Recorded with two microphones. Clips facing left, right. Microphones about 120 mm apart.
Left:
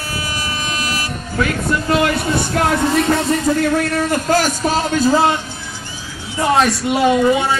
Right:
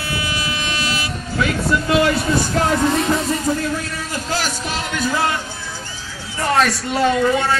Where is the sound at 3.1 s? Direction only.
80° left; by 5.3 s 30° left (ahead or behind).